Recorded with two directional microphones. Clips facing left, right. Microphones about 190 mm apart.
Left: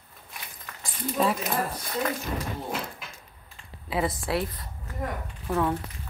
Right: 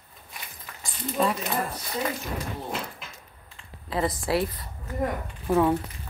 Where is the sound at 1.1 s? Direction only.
Centre (ahead or behind).